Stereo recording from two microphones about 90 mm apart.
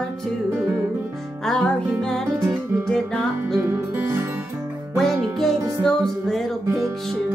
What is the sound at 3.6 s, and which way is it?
Music, 25° right (ahead or behind).